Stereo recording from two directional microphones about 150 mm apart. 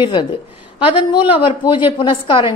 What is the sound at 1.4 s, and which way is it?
Speech, 30° left (ahead or behind).